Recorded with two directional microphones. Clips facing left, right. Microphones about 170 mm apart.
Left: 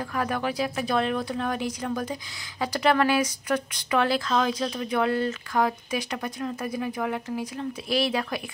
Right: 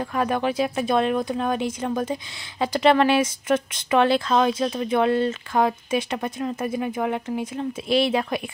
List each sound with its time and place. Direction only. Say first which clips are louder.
0.0 s speech: right 4 dB; 25° right (ahead or behind)